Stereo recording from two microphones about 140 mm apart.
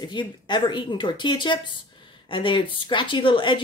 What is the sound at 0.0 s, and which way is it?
A woman's voice, 35° left (ahead or behind).